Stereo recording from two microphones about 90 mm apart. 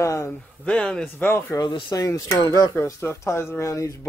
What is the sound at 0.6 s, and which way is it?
Speech, 10° left (ahead or behind).